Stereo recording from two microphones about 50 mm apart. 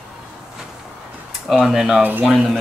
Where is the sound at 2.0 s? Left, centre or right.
Right.